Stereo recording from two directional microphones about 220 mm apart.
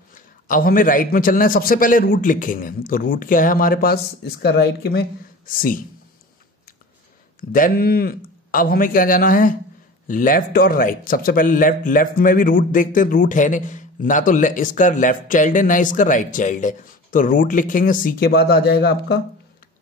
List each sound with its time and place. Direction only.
0.1 s a man's voice: 40° left (ahead or behind)
5.5 s a man's voice: 40° left (ahead or behind)
7.3 s a man's voice: 40° left (ahead or behind)